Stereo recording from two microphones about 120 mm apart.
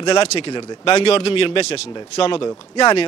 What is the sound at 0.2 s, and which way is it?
Speech, 55° left (ahead or behind).